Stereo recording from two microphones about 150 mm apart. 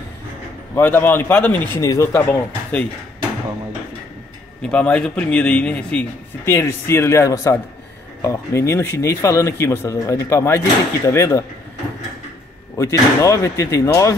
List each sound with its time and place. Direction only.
0.7 s a man's voice: 15° left (ahead or behind)
4.6 s a man's voice: 5° left (ahead or behind)
12.7 s a man's voice: 20° left (ahead or behind)